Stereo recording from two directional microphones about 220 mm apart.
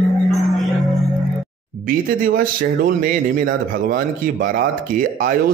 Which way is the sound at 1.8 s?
40° right (ahead or behind).